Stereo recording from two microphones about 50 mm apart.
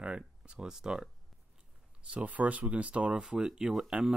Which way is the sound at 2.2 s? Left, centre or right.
Right.